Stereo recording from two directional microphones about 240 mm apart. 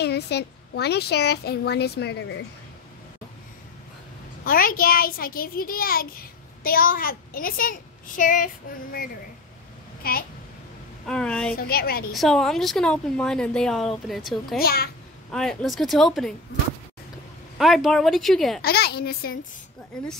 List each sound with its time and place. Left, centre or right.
0.0 s a woman's voice: left
4.5 s a child's voice: left
10.0 s a child's voice: left
11.1 s a woman's voice: centre
11.5 s a child's voice: left
12.1 s a woman's voice: centre
14.6 s a child's voice: left
15.3 s a woman's voice: centre
17.6 s a woman's voice: centre
18.6 s a child's voice: left
19.9 s a woman's voice: centre